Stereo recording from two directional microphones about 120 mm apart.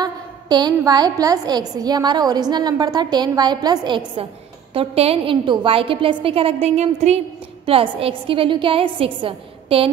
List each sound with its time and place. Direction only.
0.0 s a woman's voice: 35° right (ahead or behind)
4.7 s a woman's voice: 55° right (ahead or behind)
7.6 s a woman's voice: 50° right (ahead or behind)